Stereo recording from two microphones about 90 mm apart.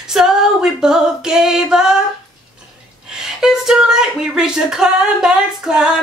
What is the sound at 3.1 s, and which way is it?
Speech, 5° right (ahead or behind).